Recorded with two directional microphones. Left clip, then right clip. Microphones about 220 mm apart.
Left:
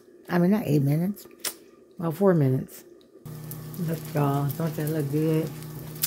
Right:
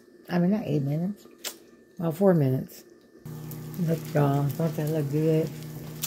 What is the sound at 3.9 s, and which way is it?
Speech, 15° right (ahead or behind).